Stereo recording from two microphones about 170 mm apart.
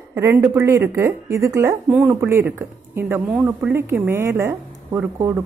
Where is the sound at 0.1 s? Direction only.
15° right (ahead or behind).